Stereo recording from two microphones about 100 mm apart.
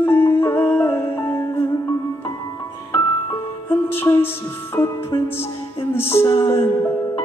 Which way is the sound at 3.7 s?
20° left (ahead or behind).